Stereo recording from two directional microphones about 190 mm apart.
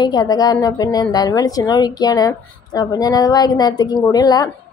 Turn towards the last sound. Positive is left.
turn(degrees=20)  # may be behind; listen again after turning